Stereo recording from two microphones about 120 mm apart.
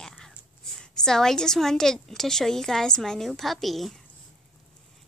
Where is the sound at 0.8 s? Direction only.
5° left (ahead or behind).